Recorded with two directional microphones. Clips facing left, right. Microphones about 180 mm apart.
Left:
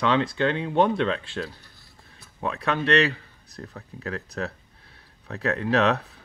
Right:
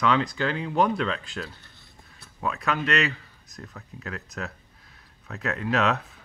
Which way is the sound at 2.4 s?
30° left (ahead or behind).